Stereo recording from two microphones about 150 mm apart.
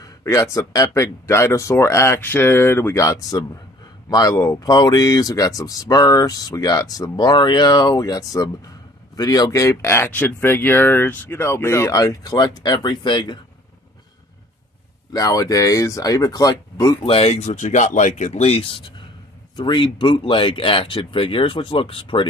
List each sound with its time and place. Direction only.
0.0 s speech: 20° left (ahead or behind)
15.1 s speech: 25° left (ahead or behind)